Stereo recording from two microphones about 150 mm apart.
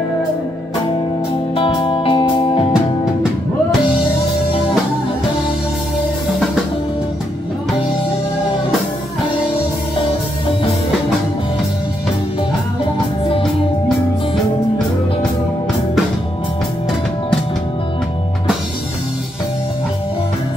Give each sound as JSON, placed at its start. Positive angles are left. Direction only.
{"t": 1.5, "sound": "music", "side_deg": 35}